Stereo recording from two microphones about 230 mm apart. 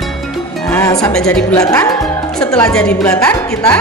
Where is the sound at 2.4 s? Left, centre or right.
Centre.